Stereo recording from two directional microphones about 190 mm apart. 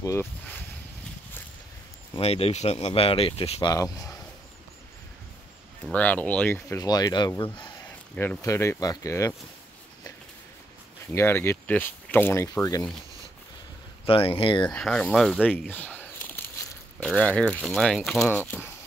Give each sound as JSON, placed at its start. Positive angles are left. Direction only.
{"t": 0.0, "sound": "speech", "side_deg": 15}
{"t": 2.1, "sound": "speech", "side_deg": 30}
{"t": 3.7, "sound": "speech", "side_deg": 15}
{"t": 5.9, "sound": "speech", "side_deg": 5}
{"t": 7.8, "sound": "speech", "side_deg": 10}
{"t": 11.1, "sound": "speech", "side_deg": 10}
{"t": 14.0, "sound": "speech", "side_deg": 30}
{"t": 14.7, "sound": "speech", "side_deg": 5}